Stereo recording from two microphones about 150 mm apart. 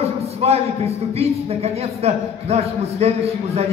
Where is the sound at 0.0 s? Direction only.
45° right (ahead or behind).